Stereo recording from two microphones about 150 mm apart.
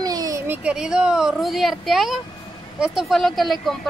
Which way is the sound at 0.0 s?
25° right (ahead or behind).